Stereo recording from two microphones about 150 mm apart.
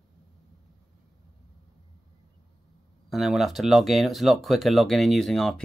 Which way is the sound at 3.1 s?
Centre (ahead or behind).